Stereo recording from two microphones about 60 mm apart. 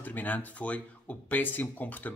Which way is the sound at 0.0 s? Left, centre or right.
Left.